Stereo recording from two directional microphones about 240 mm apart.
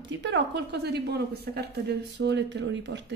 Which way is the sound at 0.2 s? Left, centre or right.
Right.